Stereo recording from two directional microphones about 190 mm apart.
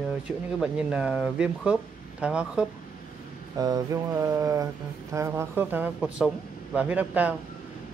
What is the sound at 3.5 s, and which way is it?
Speech, 20° right (ahead or behind).